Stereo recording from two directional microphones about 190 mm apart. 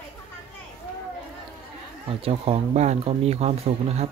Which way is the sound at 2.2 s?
30° right (ahead or behind).